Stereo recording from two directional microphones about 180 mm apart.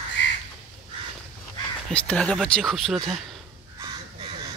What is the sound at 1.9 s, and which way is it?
Speech, 5° left (ahead or behind).